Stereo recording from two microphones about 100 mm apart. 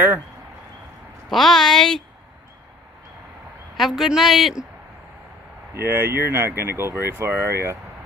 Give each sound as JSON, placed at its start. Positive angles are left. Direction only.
{"t": 1.3, "sound": "a woman's voice", "side_deg": 5}
{"t": 3.7, "sound": "a woman's voice", "side_deg": 0}
{"t": 5.8, "sound": "speech", "side_deg": -20}